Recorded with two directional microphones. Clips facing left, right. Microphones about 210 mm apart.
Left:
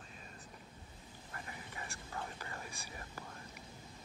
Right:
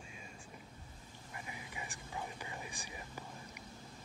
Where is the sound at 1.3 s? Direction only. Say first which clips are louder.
Right 1 dB; 10° right (ahead or behind).